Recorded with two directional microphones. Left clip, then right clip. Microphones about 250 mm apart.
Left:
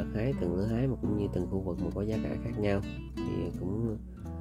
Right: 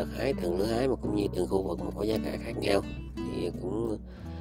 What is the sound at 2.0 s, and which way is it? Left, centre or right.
Speech, right.